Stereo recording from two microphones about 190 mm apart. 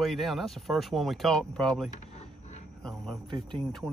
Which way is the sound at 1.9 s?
35° left (ahead or behind).